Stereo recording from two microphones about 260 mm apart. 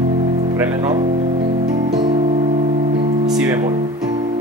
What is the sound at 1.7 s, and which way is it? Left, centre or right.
Music, centre.